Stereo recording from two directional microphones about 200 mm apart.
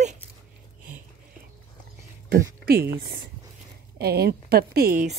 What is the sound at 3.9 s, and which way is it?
A woman's voice, 50° right (ahead or behind).